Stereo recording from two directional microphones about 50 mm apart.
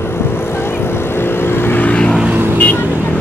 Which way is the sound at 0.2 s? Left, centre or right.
Left.